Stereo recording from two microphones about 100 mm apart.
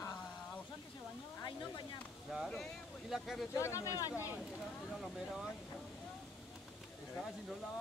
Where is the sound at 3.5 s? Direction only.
30° left (ahead or behind).